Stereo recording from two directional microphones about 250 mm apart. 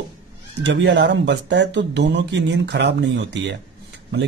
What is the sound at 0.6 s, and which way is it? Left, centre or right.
Speech, right.